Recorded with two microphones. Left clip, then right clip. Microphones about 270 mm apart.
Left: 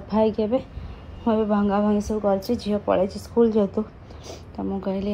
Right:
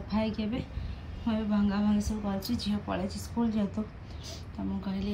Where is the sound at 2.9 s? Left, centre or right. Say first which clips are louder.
Left 17 dB; left.